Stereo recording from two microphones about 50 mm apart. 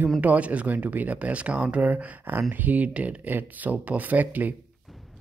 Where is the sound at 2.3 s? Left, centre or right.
Right.